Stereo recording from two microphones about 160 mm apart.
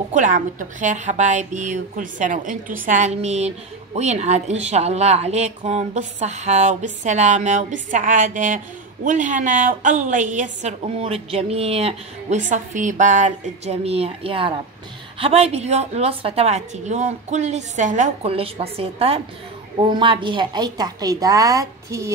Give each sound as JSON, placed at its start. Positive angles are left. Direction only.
{"t": 0.1, "sound": "a woman's voice", "side_deg": -50}